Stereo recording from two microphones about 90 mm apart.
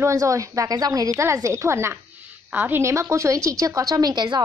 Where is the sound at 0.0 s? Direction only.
40° right (ahead or behind).